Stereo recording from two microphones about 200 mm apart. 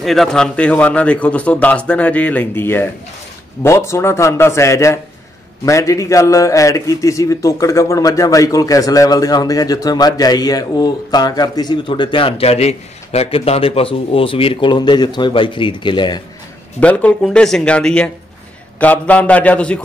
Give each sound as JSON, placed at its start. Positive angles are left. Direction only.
{"t": 0.0, "sound": "a man's voice", "side_deg": 0}
{"t": 16.8, "sound": "a man's voice", "side_deg": 5}